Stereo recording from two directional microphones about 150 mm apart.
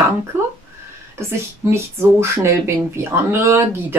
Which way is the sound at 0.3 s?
15° right (ahead or behind).